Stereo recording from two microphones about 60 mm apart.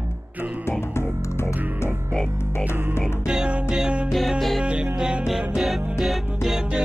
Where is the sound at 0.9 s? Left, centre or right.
Left.